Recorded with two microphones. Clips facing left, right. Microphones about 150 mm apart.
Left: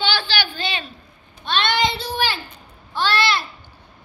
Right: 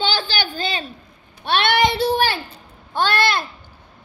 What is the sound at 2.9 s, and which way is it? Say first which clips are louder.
Babbling: right 1 dB; 50° right (ahead or behind).